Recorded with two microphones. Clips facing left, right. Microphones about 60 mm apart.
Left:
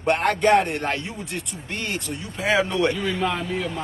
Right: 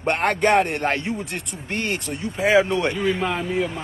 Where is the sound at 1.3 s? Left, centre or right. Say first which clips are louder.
Right 3 dB; right.